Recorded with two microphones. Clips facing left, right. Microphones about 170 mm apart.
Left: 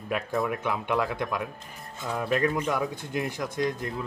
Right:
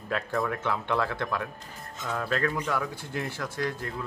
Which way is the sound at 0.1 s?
10° left (ahead or behind).